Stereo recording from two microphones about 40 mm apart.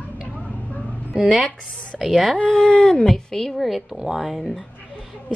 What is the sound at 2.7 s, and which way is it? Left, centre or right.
Speech, left.